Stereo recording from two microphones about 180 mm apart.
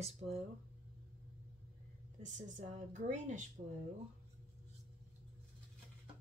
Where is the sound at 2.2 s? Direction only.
40° right (ahead or behind).